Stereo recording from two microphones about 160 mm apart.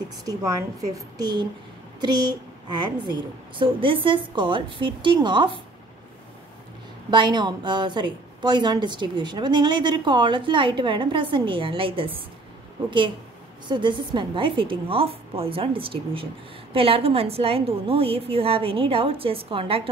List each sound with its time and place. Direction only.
0.2 s a woman's voice: 20° right (ahead or behind)
7.1 s a woman's voice: 30° right (ahead or behind)
13.7 s a woman's voice: 30° right (ahead or behind)